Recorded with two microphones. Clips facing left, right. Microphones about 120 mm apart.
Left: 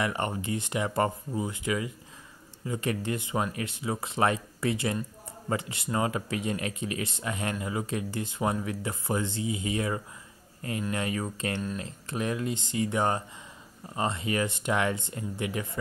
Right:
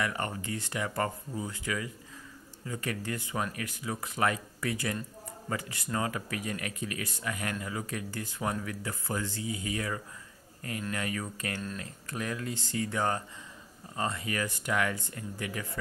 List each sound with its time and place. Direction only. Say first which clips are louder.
0.0 s speech: left 3 dB; 20° left (ahead or behind)